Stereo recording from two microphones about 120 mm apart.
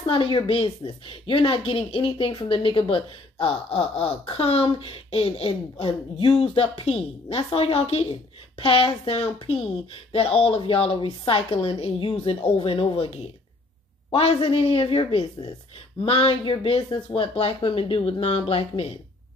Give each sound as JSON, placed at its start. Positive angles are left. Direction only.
{"t": 0.0, "sound": "speech", "side_deg": 50}